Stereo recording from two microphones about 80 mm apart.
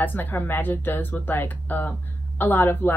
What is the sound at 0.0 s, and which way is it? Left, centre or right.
Speech, left.